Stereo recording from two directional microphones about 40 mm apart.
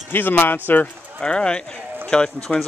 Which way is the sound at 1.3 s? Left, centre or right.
Left.